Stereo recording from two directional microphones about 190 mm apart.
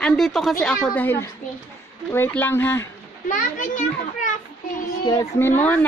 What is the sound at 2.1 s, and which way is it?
Speech, 10° left (ahead or behind).